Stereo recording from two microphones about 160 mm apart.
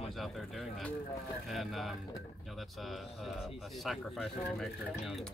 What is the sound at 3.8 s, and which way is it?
Speech, centre (ahead or behind).